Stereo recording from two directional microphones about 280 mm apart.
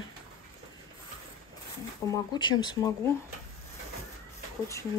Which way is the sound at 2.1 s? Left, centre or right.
Centre.